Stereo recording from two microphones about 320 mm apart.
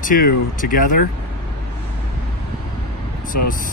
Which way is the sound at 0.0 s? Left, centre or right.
Left.